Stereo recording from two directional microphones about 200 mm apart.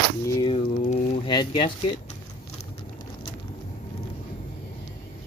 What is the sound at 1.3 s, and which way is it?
Speech, 25° left (ahead or behind).